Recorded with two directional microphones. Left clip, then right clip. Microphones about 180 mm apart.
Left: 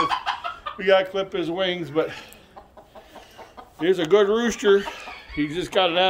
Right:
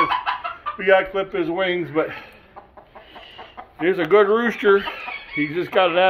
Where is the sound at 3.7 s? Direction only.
10° left (ahead or behind).